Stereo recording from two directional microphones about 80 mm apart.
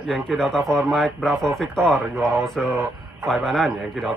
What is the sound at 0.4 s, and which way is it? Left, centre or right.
Speech, centre.